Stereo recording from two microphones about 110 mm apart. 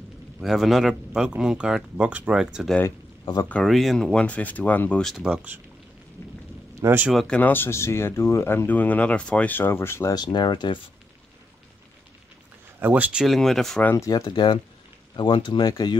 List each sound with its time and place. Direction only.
0.4 s speech: centre (ahead or behind); by 5.0 s 15° left (ahead or behind)
5.0 s speech: 5° right (ahead or behind)
6.7 s a sound: 25° right (ahead or behind)
7.1 s speech: centre (ahead or behind)
7.3 s speech: 20° left (ahead or behind)
10.1 s speech: 40° left (ahead or behind)
12.8 s speech: 15° right (ahead or behind)
13.2 s speech: centre (ahead or behind)
13.8 s speech: 30° left (ahead or behind)
14.2 s speech: 40° left (ahead or behind)